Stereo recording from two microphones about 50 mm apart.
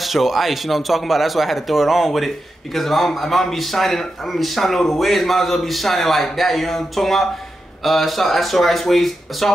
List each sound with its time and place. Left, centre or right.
0.0 s speech: centre